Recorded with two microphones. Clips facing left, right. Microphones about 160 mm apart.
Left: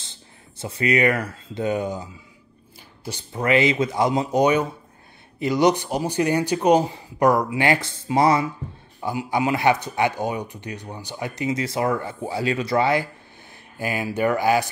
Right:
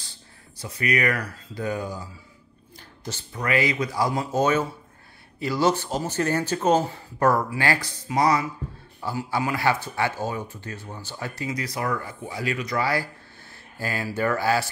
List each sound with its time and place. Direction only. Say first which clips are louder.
0.0 s speech: left 2 dB; 25° left (ahead or behind)
3.0 s a sound: left 2 dB; 15° left (ahead or behind)
3.3 s speech: left 5 dB; 25° left (ahead or behind)